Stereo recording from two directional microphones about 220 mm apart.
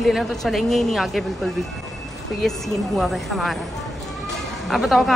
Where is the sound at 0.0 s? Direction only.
Centre (ahead or behind).